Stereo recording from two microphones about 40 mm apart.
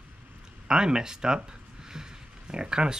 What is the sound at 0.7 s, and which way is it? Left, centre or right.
Speech, centre.